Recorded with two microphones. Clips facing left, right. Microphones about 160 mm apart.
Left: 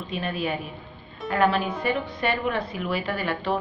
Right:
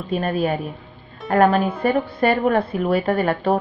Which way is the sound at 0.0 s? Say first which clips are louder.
Right 7 dB; 45° right (ahead or behind).